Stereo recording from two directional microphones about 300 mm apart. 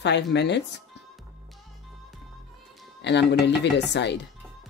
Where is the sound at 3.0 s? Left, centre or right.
Left.